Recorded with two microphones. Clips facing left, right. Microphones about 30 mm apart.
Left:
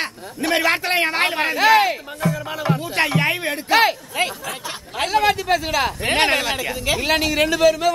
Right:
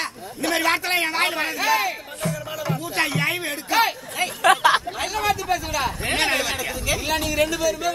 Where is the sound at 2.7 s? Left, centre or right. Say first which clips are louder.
Left 6 dB; left.